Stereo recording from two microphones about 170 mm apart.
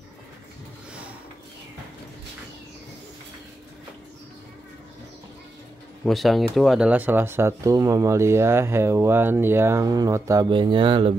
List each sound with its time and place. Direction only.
6.0 s speech: centre (ahead or behind); by 11.1 s 30° right (ahead or behind)